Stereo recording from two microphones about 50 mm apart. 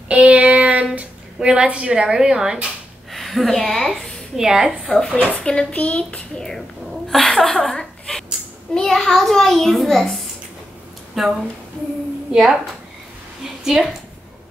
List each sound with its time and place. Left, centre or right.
0.1 s child singing: right
0.9 s a woman's voice: right
3.1 s a woman's voice: centre
4.4 s a woman's voice: centre
4.6 s a child's voice: centre
5.1 s speech: left
5.4 s a child's voice: centre
12.3 s a woman's voice: centre
13.4 s a sound: centre